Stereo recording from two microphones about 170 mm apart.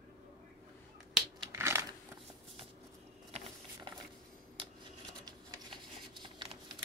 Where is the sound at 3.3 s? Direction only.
35° right (ahead or behind).